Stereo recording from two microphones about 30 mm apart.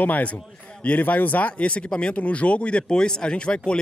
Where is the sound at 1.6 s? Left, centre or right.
Left.